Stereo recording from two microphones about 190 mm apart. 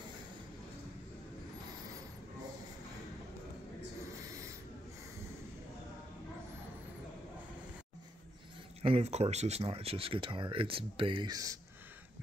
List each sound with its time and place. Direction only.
8.8 s speech: 35° right (ahead or behind)